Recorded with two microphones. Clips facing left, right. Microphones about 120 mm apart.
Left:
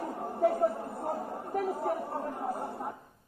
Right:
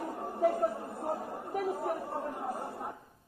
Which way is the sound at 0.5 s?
25° left (ahead or behind).